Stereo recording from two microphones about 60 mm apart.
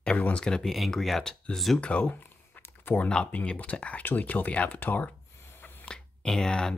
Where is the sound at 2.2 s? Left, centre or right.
Left.